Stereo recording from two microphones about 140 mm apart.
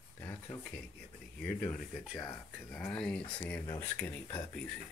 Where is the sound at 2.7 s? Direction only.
10° left (ahead or behind).